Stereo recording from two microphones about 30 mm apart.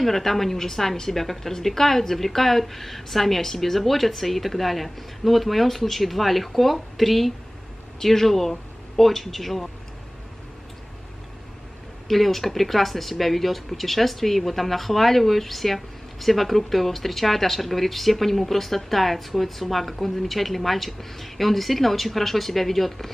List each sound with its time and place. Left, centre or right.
0.0 s a woman's voice: centre
12.1 s speech: centre